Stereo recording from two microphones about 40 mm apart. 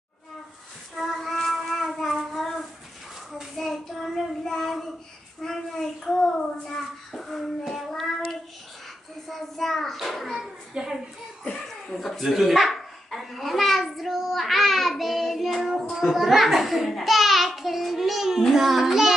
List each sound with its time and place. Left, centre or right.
0.9 s child singing: centre
9.3 s child singing: centre
10.8 s a sound: right
11.6 s chuckle: centre
12.2 s a sound: centre
14.4 s child singing: centre